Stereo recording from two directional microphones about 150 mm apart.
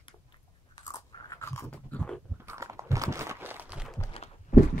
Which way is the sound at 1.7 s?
10° left (ahead or behind).